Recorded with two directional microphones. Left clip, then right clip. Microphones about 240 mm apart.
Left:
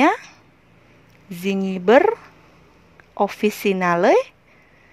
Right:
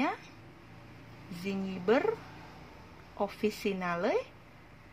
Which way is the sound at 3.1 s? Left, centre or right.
Left.